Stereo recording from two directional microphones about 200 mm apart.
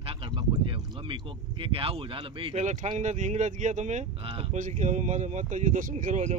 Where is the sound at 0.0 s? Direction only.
25° right (ahead or behind).